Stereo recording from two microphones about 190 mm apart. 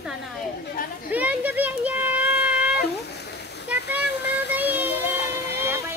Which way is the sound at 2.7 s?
60° left (ahead or behind).